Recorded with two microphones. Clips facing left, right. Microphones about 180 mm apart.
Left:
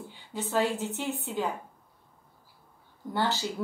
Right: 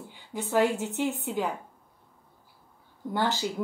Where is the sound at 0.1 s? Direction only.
15° right (ahead or behind).